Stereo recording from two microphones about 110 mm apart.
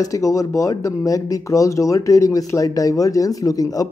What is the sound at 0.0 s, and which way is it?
Speech, 30° left (ahead or behind).